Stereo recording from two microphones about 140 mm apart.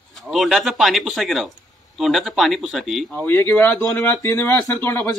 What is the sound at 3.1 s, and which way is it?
A man's voice, 15° left (ahead or behind).